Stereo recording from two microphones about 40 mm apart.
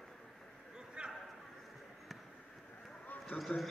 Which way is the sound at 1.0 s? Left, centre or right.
Right.